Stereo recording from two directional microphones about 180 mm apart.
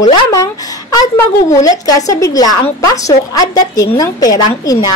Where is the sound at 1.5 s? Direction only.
20° left (ahead or behind).